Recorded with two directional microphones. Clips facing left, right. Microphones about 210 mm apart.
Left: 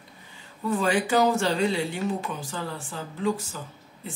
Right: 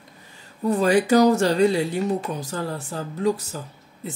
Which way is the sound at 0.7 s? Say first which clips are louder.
Right 6 dB; 40° right (ahead or behind).